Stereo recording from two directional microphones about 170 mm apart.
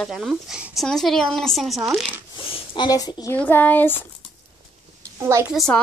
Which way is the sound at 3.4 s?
10° left (ahead or behind).